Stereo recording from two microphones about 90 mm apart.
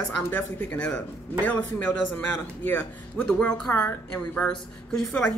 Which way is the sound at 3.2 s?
20° left (ahead or behind).